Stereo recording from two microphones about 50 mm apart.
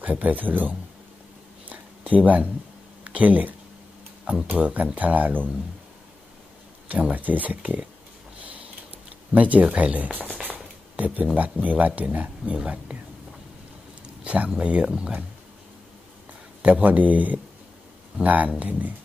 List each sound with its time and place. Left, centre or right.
0.0 s speech: right
1.7 s a sound: right
4.6 s speech: right
6.9 s speech: right
9.3 s speech: right
10.4 s a sound: right
11.3 s speech: right
14.0 s a sound: right
14.5 s speech: right
16.6 s speech: right